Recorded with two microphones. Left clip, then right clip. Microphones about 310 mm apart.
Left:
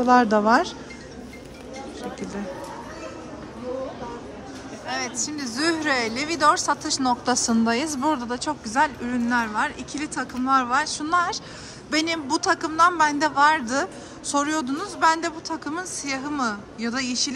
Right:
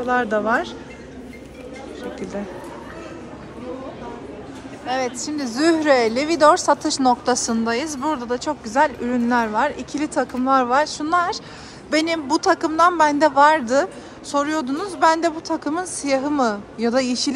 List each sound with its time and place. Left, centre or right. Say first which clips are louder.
0.0 s speech: left 2 dB; centre
4.8 s a woman's voice: right 5 dB; centre